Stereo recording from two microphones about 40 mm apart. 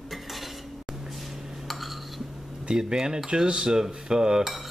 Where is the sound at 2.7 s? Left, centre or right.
Centre.